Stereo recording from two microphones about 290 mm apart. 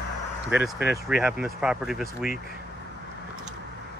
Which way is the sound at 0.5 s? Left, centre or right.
Centre.